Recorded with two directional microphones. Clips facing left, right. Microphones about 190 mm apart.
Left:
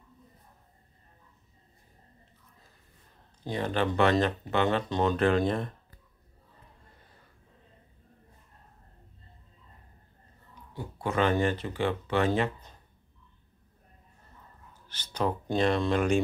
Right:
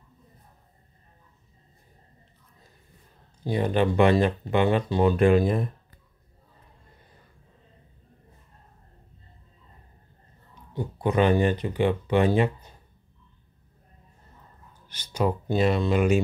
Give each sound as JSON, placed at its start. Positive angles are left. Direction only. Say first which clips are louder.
{"t": 3.4, "sound": "speech", "louder": "right 5 dB", "side_deg": -15}
{"t": 10.7, "sound": "speech", "louder": "right 6 dB", "side_deg": -20}
{"t": 14.9, "sound": "speech", "louder": "right 4 dB", "side_deg": -10}